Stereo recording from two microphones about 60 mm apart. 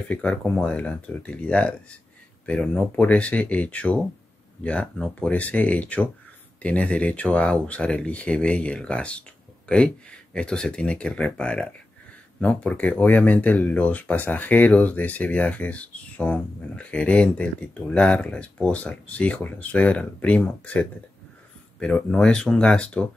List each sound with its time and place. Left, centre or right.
0.1 s speech: left